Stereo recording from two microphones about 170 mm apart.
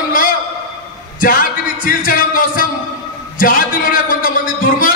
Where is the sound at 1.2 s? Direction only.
55° left (ahead or behind).